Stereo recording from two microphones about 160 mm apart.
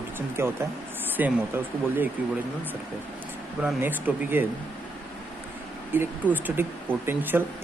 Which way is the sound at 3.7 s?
10° right (ahead or behind).